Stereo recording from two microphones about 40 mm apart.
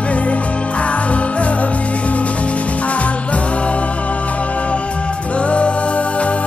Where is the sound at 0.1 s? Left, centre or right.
Left.